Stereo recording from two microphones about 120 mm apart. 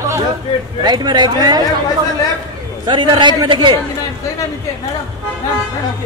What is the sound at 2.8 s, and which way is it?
Speech, 40° right (ahead or behind).